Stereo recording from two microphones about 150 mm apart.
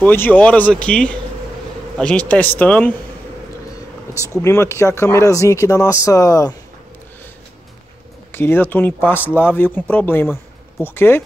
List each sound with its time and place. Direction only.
0.0 s speech: 15° left (ahead or behind)
4.1 s speech: 15° right (ahead or behind)
4.4 s speech: 20° left (ahead or behind)
8.3 s speech: 15° left (ahead or behind)